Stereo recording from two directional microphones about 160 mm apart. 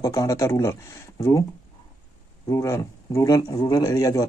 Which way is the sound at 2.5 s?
20° left (ahead or behind).